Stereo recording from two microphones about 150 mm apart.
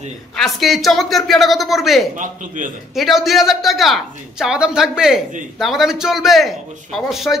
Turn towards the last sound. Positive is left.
turn(degrees=0)  # may be behind; listen again after turning